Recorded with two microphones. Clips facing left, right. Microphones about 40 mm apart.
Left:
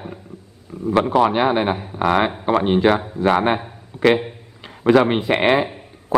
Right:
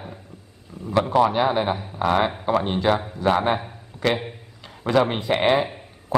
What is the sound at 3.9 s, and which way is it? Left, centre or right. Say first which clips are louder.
Speech: left 7 dB; left.